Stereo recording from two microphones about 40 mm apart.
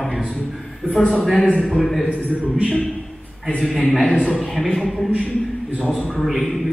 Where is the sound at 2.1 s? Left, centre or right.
Right.